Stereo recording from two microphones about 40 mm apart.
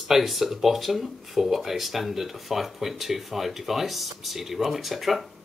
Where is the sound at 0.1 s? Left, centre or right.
Centre.